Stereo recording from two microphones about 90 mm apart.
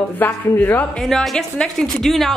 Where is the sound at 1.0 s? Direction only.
5° left (ahead or behind).